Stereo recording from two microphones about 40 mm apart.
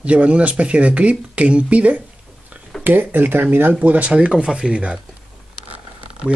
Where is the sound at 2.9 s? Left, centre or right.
Right.